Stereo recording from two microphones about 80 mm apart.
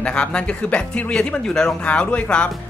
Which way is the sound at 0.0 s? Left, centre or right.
Centre.